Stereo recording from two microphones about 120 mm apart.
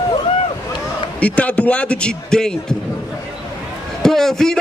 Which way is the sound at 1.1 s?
10° left (ahead or behind).